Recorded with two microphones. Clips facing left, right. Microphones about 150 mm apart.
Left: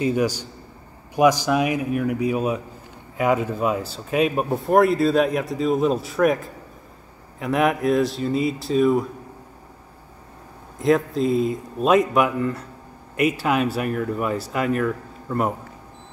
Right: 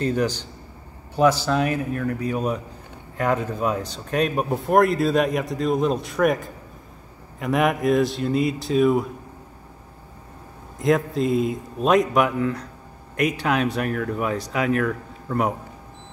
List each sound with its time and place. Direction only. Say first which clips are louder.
0.0 s a man's voice: left 1 dB; 10° left (ahead or behind)
10.8 s speech: left 1 dB; centre (ahead or behind)